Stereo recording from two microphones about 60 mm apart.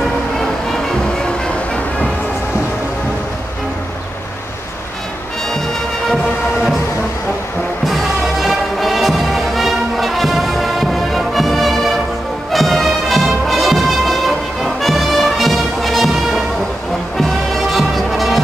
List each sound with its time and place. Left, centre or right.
1.2 s train: centre
7.8 s music: centre
17.7 s music: centre